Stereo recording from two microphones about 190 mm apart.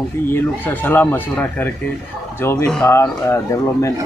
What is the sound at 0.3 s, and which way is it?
Speech, 10° left (ahead or behind).